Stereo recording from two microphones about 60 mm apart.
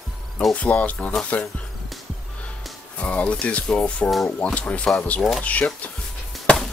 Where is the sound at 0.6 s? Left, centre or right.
Left.